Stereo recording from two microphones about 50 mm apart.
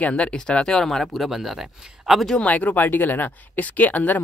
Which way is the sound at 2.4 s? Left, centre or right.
Left.